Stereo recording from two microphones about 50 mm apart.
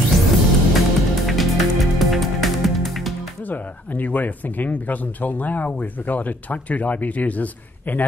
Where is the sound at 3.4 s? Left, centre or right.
Left.